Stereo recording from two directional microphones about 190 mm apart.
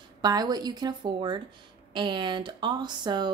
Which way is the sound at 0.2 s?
20° right (ahead or behind).